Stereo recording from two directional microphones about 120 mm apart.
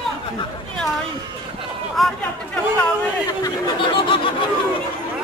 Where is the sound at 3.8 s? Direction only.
45° left (ahead or behind).